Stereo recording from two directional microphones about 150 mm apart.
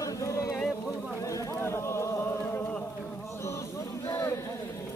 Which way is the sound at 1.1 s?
20° left (ahead or behind).